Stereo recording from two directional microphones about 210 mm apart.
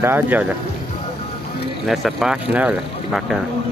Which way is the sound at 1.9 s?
Centre (ahead or behind).